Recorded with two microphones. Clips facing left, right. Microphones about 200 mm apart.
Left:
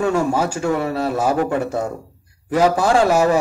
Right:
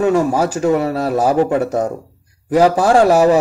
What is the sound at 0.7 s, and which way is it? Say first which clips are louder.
Speech: right 4 dB; 40° right (ahead or behind).